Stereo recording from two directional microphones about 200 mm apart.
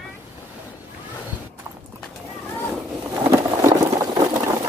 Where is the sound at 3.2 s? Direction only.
15° right (ahead or behind).